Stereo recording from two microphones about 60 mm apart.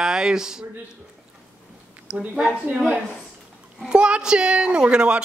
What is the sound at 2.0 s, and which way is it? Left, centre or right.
Speech, centre.